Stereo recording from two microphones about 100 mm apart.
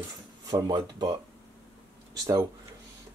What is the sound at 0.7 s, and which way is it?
Speech, 55° right (ahead or behind).